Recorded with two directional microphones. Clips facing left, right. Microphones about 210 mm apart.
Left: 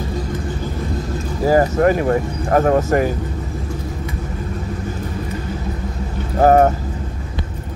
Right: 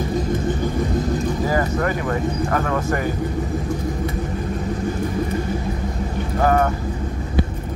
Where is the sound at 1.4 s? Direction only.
35° left (ahead or behind).